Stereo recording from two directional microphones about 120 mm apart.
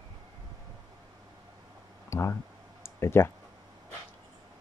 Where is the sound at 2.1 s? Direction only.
20° left (ahead or behind).